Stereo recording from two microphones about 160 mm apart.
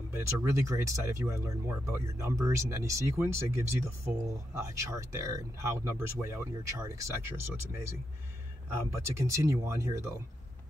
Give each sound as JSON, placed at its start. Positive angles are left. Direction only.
{"t": 0.1, "sound": "speech", "side_deg": -20}
{"t": 8.9, "sound": "speech", "side_deg": -20}